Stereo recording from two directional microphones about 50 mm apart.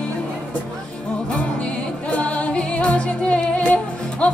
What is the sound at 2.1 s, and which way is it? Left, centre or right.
Music, left.